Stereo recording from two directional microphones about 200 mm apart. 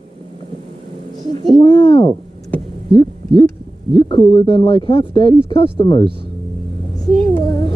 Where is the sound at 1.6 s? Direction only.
30° left (ahead or behind).